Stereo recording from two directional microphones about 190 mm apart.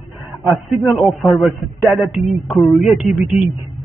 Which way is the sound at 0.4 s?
Centre (ahead or behind).